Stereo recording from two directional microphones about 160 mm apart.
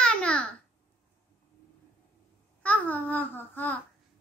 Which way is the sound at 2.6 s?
10° left (ahead or behind).